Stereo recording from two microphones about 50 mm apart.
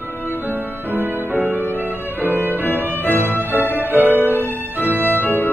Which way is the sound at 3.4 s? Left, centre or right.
Right.